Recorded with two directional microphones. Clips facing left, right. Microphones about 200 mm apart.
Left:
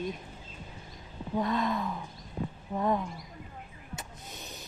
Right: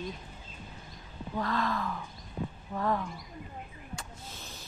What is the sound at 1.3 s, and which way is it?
Speech, 20° left (ahead or behind).